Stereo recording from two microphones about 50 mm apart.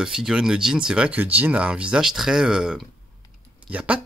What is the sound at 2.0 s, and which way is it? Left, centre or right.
Speech, centre.